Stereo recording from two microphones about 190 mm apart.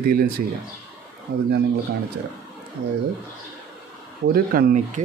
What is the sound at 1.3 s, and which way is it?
Speech, 50° right (ahead or behind).